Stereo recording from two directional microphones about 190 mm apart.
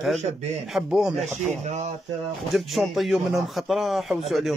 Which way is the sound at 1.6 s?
35° right (ahead or behind).